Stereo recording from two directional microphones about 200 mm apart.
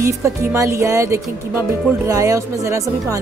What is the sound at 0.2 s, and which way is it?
A woman's voice, 15° right (ahead or behind).